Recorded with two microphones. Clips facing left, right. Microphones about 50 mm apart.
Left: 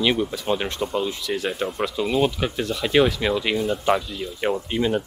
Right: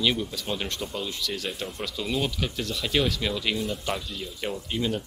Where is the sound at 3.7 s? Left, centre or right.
Left.